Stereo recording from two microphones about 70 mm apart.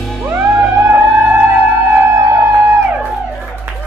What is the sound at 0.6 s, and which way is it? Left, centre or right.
Music, right.